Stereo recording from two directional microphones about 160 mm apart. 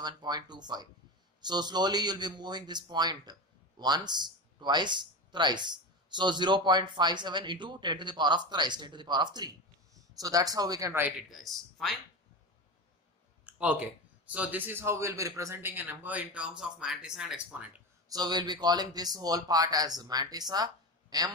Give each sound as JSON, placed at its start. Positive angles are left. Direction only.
{"t": 0.0, "sound": "a man's voice", "side_deg": -25}
{"t": 13.5, "sound": "a man's voice", "side_deg": -10}
{"t": 18.0, "sound": "speech", "side_deg": -25}